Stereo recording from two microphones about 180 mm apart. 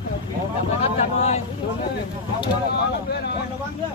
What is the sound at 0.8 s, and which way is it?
Vehicle, 35° left (ahead or behind).